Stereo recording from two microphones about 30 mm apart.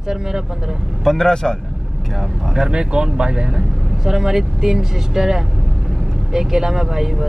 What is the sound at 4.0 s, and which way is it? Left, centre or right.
Speech, centre.